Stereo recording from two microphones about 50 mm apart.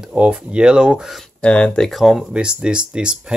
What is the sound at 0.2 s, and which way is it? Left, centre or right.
Speech, right.